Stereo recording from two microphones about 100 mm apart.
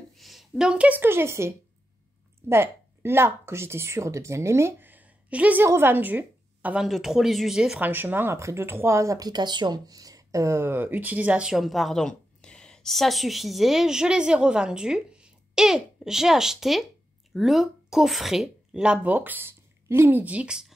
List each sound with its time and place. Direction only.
0.1 s speech: centre (ahead or behind); by 1.5 s 25° right (ahead or behind)
2.5 s a woman's voice: 25° right (ahead or behind); by 7.8 s 5° right (ahead or behind)
7.8 s a woman's voice: 20° right (ahead or behind)